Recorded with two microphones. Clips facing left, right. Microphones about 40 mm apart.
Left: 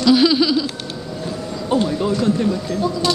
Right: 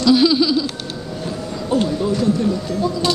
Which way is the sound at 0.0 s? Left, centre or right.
Centre.